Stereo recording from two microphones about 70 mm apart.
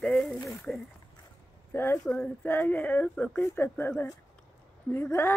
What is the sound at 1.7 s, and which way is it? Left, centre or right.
Speech, left.